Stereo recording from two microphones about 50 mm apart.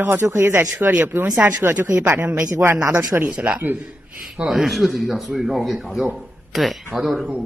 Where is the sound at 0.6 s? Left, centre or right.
Right.